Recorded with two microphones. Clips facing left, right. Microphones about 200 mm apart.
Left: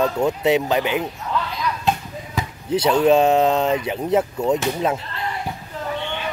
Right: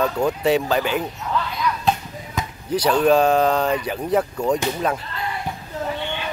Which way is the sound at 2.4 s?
25° left (ahead or behind).